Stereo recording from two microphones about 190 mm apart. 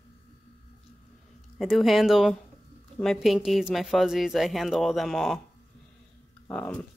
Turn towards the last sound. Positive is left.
turn(degrees=5)  # may be behind; listen again after turning